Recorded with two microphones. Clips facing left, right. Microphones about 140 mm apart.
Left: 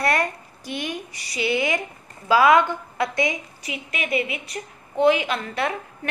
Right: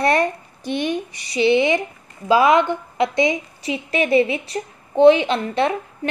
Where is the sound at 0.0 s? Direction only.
25° right (ahead or behind).